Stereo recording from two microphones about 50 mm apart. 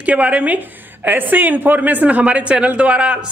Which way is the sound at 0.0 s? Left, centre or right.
Right.